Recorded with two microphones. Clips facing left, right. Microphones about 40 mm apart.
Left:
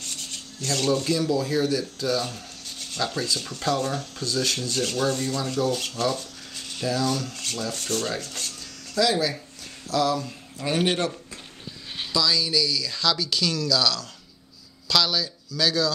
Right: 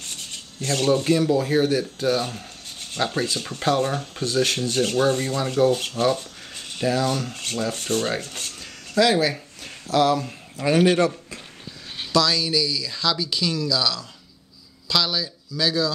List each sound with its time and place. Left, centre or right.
0.0 s speech: right
8.2 s a sound: right
10.6 s a man's voice: right
11.1 s a sound: right
12.1 s speech: right
12.5 s speech: right